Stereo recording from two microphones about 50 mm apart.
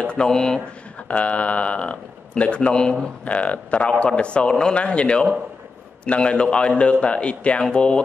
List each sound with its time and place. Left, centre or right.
0.0 s speech: centre
1.0 s speech: left
3.3 s speech: left